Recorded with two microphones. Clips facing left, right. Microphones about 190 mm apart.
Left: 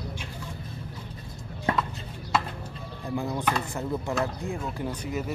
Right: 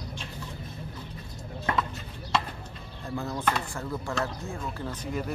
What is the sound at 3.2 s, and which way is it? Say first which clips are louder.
Speech: left 1 dB; 15° left (ahead or behind).